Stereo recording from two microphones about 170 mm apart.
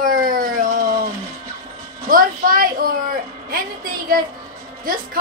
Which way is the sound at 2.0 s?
55° right (ahead or behind).